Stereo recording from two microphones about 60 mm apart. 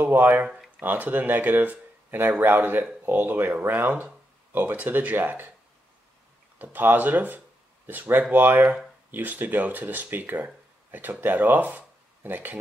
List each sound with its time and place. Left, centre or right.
0.0 s speech: right
6.6 s speech: right